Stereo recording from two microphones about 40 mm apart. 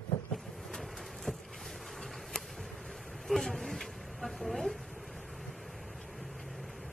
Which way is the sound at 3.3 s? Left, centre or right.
Centre.